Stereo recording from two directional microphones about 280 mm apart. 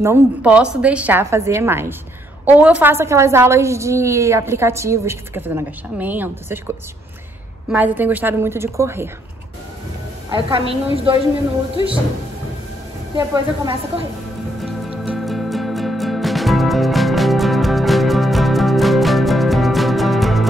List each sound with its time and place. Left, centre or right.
0.0 s a woman's voice: centre
7.7 s a woman's voice: centre
10.3 s a woman's voice: centre
13.3 s speech: centre
14.6 s music: centre